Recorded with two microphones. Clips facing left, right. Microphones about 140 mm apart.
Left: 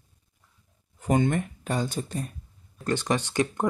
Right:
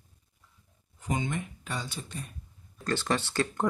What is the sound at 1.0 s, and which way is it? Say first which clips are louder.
Speech: left 8 dB; 55° left (ahead or behind).